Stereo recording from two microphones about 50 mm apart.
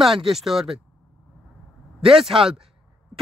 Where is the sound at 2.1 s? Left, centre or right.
Centre.